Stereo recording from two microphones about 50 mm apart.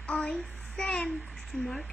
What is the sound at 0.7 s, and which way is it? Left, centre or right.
Speech, centre.